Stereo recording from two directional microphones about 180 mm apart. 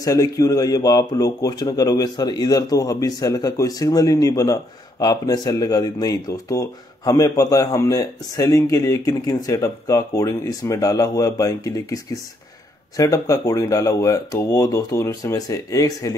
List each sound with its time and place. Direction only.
0.0 s a man's voice: 20° left (ahead or behind)